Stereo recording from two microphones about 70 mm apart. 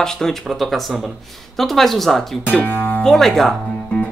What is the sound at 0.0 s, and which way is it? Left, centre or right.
Speech, centre.